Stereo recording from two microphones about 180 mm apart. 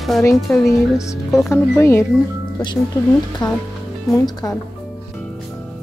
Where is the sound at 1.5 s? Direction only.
15° left (ahead or behind).